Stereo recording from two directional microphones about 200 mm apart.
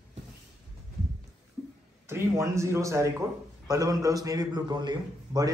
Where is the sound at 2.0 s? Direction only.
15° right (ahead or behind).